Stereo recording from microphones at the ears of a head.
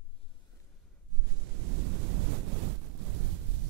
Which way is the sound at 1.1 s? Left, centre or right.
Right.